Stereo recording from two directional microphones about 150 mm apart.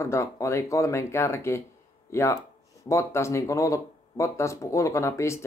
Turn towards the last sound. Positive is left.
turn(degrees=20)  # may be behind; listen again after turning